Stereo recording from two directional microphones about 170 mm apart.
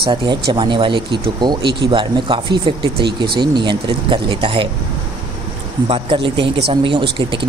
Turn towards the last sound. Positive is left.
turn(degrees=-30)  # may be behind; listen again after turning